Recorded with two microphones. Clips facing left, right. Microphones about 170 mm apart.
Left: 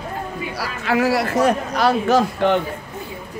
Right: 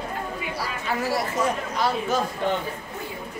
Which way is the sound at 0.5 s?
75° left (ahead or behind).